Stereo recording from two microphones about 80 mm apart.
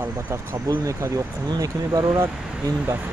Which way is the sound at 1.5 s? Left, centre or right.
Right.